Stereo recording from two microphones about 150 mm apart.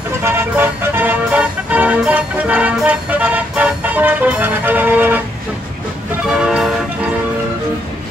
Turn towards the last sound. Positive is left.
turn(degrees=-5)  # may be behind; listen again after turning